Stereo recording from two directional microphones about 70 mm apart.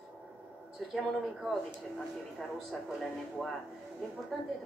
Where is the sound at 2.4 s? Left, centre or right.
Centre.